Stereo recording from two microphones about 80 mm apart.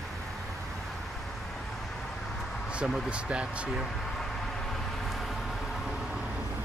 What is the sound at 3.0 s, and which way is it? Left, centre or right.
Speech, centre.